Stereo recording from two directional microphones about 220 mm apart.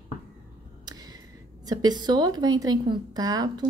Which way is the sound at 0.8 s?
15° right (ahead or behind).